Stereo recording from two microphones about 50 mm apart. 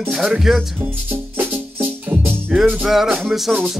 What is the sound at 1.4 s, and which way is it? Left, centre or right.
Music, right.